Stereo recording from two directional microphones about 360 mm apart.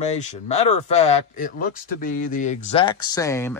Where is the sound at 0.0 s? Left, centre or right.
Centre.